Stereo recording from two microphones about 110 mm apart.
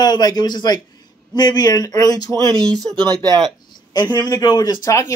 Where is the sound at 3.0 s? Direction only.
35° right (ahead or behind).